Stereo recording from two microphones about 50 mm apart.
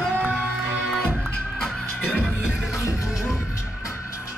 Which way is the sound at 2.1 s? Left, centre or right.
Left.